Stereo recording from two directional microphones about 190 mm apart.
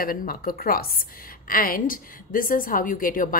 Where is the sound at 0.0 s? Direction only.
50° left (ahead or behind).